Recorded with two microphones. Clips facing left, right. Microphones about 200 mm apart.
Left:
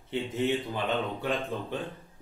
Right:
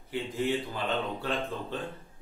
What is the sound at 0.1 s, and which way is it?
Speech, 20° left (ahead or behind).